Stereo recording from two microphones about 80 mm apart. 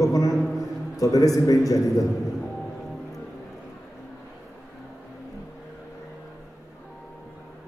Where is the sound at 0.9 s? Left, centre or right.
Left.